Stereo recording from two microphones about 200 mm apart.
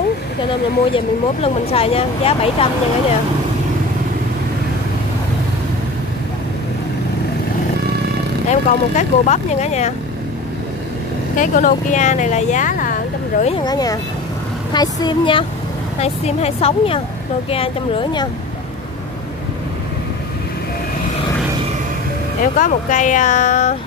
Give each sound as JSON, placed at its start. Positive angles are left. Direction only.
{"t": 0.9, "sound": "speech", "side_deg": 30}
{"t": 8.5, "sound": "speech", "side_deg": 35}
{"t": 11.3, "sound": "speech", "side_deg": 40}
{"t": 13.4, "sound": "speech", "side_deg": 25}
{"t": 22.4, "sound": "speech", "side_deg": 40}